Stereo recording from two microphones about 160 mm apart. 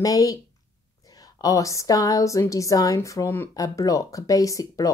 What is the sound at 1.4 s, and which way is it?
A woman's voice, 20° left (ahead or behind).